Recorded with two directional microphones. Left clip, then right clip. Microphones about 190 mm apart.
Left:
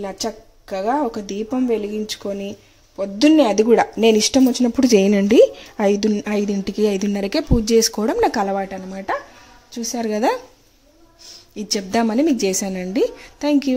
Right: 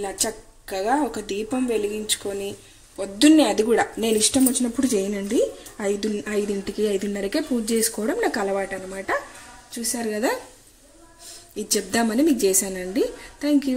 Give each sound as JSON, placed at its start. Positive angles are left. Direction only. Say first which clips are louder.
{"t": 0.0, "sound": "speech", "louder": "left 1 dB", "side_deg": 35}
{"t": 11.5, "sound": "a woman's voice", "louder": "left 3 dB", "side_deg": 45}